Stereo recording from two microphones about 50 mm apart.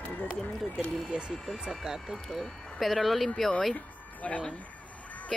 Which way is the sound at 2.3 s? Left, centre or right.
Centre.